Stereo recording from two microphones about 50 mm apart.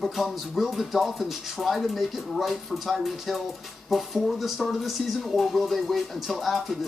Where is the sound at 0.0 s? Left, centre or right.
Centre.